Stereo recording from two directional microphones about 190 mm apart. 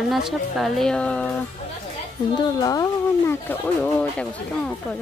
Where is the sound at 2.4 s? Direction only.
20° left (ahead or behind).